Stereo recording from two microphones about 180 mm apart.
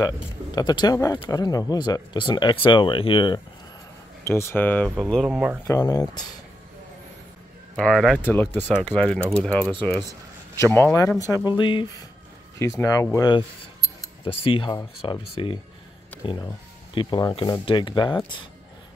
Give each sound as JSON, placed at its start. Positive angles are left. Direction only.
{"t": 0.6, "sound": "speech", "side_deg": 20}
{"t": 4.2, "sound": "speech", "side_deg": 15}
{"t": 5.7, "sound": "speech", "side_deg": 20}
{"t": 7.7, "sound": "speech", "side_deg": 0}
{"t": 8.2, "sound": "speech", "side_deg": 10}
{"t": 9.6, "sound": "speech", "side_deg": -25}
{"t": 10.7, "sound": "speech", "side_deg": 10}